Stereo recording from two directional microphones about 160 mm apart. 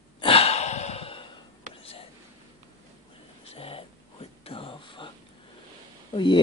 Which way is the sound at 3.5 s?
35° left (ahead or behind).